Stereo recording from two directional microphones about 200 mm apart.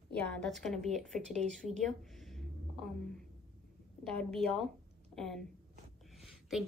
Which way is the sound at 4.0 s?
5° left (ahead or behind).